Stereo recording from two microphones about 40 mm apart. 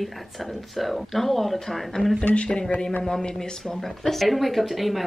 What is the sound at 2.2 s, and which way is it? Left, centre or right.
Speech, left.